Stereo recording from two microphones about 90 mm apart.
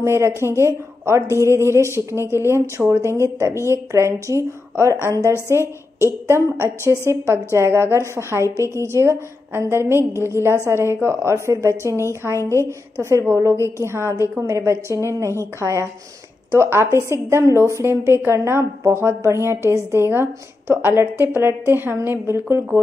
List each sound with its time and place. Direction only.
0.0 s a woman's voice: 30° right (ahead or behind)
5.2 s a woman's voice: 30° left (ahead or behind)
6.0 s a woman's voice: 30° right (ahead or behind)
8.5 s a woman's voice: 35° left (ahead or behind)
8.8 s a woman's voice: 30° right (ahead or behind)
12.4 s a woman's voice: 30° left (ahead or behind)
12.6 s a woman's voice: 30° right (ahead or behind)
16.5 s a woman's voice: 25° right (ahead or behind)